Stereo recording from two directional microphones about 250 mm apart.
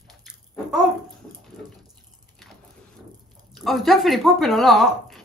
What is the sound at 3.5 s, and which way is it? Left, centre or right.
Speech, centre.